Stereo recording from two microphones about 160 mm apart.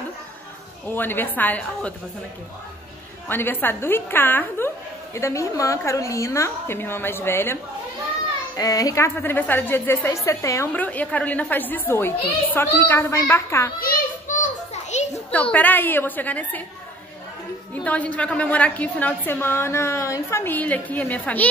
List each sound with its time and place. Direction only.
0.9 s a woman's voice: 10° left (ahead or behind)
3.3 s a woman's voice: 15° left (ahead or behind)
8.5 s a woman's voice: 20° left (ahead or behind)
13.7 s children playing: 60° left (ahead or behind)
15.5 s a woman's voice: 10° left (ahead or behind)
17.8 s a woman's voice: 10° left (ahead or behind)